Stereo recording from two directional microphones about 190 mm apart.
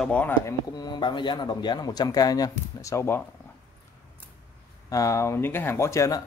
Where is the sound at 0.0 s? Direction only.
5° left (ahead or behind).